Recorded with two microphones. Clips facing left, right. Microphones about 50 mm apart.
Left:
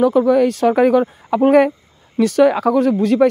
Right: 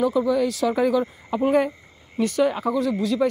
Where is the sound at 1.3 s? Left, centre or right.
Left.